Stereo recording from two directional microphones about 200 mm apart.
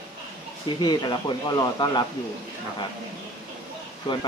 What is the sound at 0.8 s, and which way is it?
Speech, 20° left (ahead or behind).